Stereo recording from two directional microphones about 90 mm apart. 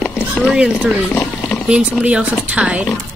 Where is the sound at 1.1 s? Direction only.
10° left (ahead or behind).